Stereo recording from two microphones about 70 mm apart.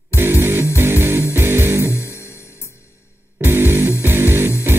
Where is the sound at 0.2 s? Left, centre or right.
Right.